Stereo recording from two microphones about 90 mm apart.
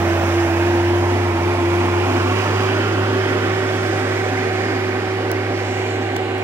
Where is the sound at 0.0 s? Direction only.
25° right (ahead or behind).